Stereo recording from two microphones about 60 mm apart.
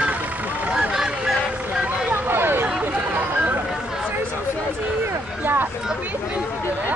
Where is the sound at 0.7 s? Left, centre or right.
Centre.